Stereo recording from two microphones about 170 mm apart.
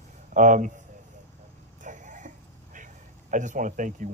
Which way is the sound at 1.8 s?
50° right (ahead or behind).